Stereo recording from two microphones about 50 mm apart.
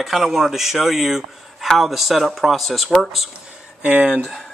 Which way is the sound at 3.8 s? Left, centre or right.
Right.